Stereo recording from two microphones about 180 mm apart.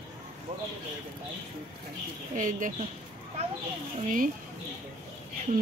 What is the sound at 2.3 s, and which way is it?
Speech, 45° right (ahead or behind).